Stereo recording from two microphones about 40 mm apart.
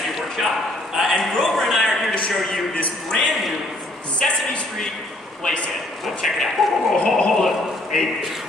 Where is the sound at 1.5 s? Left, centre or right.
Centre.